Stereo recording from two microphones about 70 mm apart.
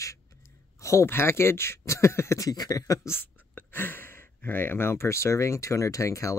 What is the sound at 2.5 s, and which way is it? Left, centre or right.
Speech, left.